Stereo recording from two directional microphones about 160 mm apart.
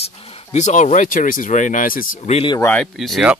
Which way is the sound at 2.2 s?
40° left (ahead or behind).